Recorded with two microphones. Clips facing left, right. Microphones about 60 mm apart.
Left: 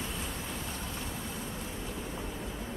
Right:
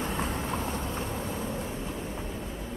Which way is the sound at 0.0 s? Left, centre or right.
Right.